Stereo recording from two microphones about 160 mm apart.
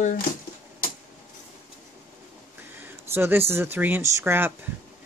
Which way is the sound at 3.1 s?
15° right (ahead or behind).